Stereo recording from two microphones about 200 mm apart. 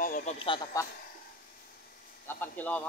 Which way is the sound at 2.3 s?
10° left (ahead or behind).